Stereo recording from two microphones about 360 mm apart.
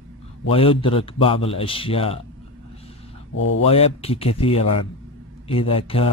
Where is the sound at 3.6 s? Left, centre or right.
Centre.